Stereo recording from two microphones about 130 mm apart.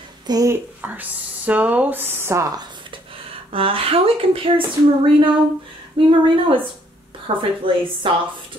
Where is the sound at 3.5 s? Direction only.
45° right (ahead or behind).